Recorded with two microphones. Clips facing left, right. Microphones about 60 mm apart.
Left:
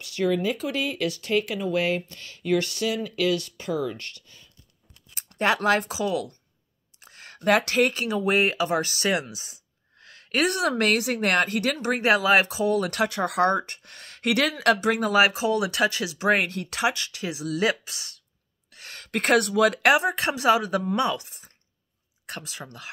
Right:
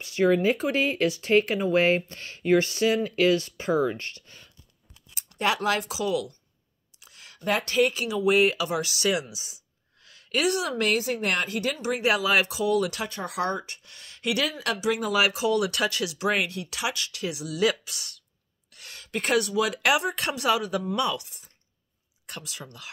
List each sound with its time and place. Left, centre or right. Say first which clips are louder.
0.0 s speech: right 3 dB; right
5.1 s speech: left 3 dB; left
7.0 s a sound: left 4 dB; left
7.3 s speech: left 3 dB; left
12.9 s speech: left 8 dB; left
13.4 s speech: left 6 dB; left